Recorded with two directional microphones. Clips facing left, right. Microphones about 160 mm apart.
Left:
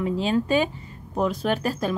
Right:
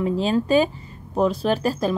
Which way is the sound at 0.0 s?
35° right (ahead or behind).